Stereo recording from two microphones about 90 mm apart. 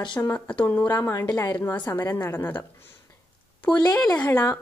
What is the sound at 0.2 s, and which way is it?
A woman's voice, 15° left (ahead or behind).